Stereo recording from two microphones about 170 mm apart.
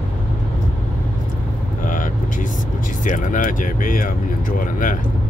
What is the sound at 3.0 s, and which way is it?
Speech, 50° left (ahead or behind).